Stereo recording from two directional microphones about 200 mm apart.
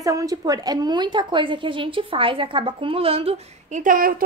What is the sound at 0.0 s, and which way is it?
A woman's voice, 15° right (ahead or behind).